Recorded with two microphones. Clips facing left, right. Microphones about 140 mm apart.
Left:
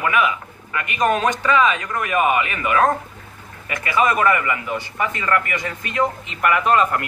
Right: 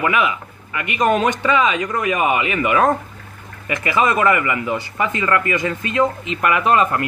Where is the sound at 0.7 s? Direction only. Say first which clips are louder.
Right 2 dB; 20° right (ahead or behind).